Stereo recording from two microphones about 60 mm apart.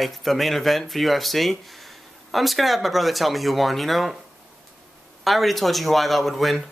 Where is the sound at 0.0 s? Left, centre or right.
Centre.